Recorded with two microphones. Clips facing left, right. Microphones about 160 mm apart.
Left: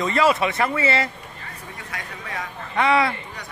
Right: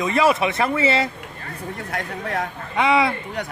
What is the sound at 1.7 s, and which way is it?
Speech, 55° right (ahead or behind).